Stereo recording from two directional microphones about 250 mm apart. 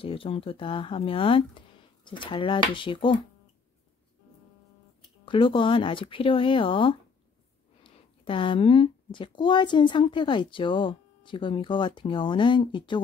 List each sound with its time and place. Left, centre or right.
0.0 s speech: left
5.2 s speech: centre